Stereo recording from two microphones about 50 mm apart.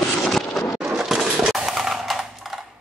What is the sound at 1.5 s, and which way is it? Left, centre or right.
Percussion, centre.